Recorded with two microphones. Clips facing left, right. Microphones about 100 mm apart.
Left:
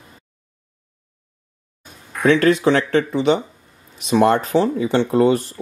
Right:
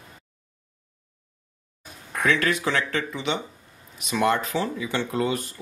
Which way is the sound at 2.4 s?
30° left (ahead or behind).